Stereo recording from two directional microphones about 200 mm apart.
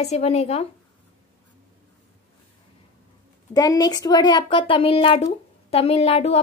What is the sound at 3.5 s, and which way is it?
A child's voice, 20° left (ahead or behind).